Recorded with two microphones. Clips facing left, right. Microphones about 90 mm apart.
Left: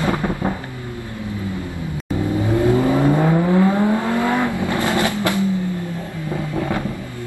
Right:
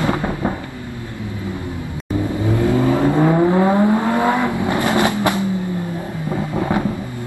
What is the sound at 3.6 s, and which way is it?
Vehicle, 20° right (ahead or behind).